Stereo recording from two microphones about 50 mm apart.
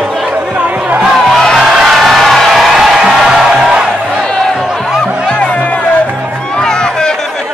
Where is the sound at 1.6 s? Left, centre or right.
Centre.